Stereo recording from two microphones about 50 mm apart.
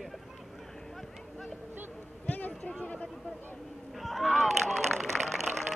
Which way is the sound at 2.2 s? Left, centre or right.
Left.